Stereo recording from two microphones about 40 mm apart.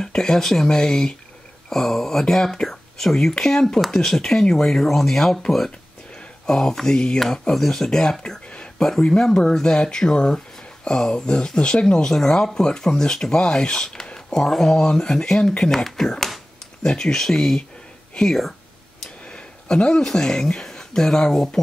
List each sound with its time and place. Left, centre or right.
0.0 s speech: centre
7.5 s speech: centre
15.7 s speech: centre